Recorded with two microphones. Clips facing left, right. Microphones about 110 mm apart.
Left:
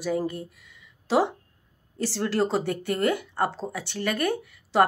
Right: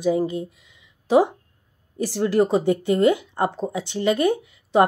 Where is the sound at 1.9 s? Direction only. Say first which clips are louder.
Right 6 dB; 15° right (ahead or behind).